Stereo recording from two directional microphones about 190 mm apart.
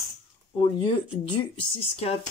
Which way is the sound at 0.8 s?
25° left (ahead or behind).